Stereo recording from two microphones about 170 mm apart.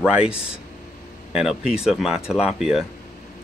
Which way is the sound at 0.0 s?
5° right (ahead or behind).